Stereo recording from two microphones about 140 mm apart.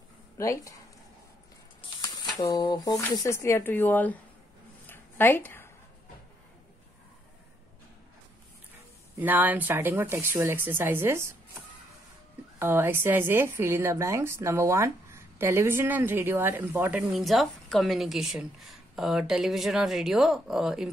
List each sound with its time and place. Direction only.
0.4 s speech: 20° left (ahead or behind)
2.0 s a sound: 25° left (ahead or behind)
3.2 s a woman's voice: 20° left (ahead or behind)
4.8 s a sound: 15° left (ahead or behind)
9.1 s a woman's voice: 15° right (ahead or behind)
12.5 s a woman's voice: 15° right (ahead or behind)
17.0 s speech: centre (ahead or behind)